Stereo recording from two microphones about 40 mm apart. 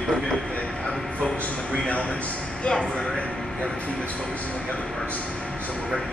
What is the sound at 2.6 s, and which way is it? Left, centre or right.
Speech, left.